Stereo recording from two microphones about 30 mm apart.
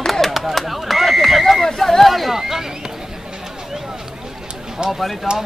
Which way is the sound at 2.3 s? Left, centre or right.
Centre.